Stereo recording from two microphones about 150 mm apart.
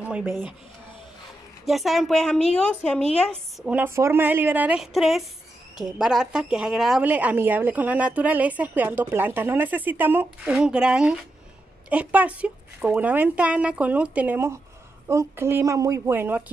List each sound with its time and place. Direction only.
0.0 s speech: 10° right (ahead or behind)
1.7 s a woman's voice: centre (ahead or behind)
3.6 s a woman's voice: 10° right (ahead or behind)